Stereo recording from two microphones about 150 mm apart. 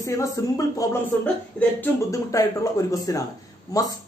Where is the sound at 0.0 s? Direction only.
20° left (ahead or behind).